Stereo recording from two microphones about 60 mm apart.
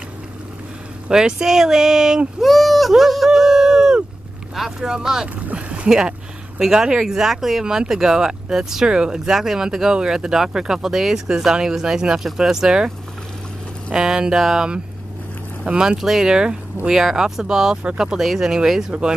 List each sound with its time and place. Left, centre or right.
1.0 s speech: centre
5.4 s speech: right
13.9 s speech: centre
16.0 s speech: centre